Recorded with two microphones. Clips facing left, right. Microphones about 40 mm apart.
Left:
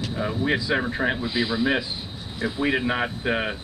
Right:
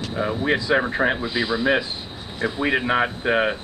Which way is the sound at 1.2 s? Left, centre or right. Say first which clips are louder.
Right 2 dB; centre.